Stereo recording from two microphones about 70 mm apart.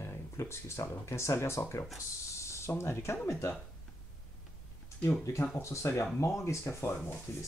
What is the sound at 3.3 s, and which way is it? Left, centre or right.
Speech, left.